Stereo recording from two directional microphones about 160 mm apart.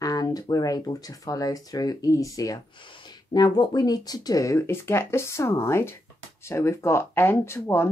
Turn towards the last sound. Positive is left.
turn(degrees=15)  # may be behind; listen again after turning